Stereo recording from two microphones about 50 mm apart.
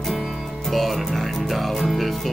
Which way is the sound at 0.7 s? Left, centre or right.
Centre.